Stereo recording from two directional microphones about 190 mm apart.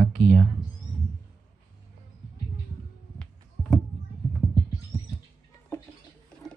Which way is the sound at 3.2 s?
Centre (ahead or behind).